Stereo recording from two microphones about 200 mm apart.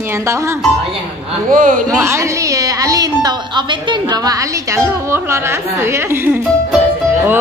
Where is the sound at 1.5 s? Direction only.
40° right (ahead or behind).